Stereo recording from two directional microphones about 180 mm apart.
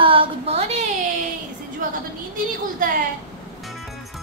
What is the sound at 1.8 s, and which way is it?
A woman's voice, 50° right (ahead or behind).